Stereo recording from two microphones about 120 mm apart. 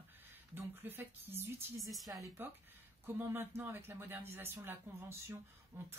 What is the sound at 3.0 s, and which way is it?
Speech, 15° right (ahead or behind).